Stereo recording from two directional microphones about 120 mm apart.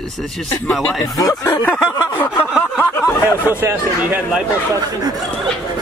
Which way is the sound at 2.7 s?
15° left (ahead or behind).